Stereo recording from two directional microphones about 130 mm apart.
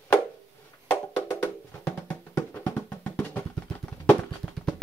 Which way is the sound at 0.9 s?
20° left (ahead or behind).